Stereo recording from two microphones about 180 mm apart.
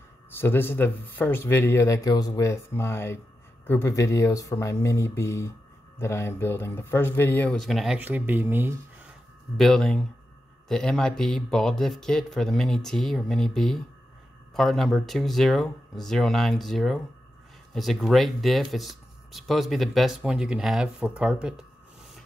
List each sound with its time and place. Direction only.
0.4 s speech: 10° left (ahead or behind); by 8.7 s 10° right (ahead or behind)
9.6 s speech: centre (ahead or behind)